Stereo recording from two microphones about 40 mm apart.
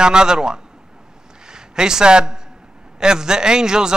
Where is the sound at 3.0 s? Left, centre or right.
Centre.